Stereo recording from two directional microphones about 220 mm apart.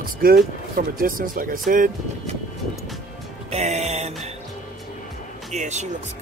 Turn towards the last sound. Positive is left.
turn(degrees=-30)  # may be behind; listen again after turning